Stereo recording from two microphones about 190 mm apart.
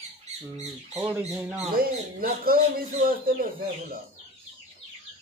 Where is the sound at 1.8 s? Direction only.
50° right (ahead or behind).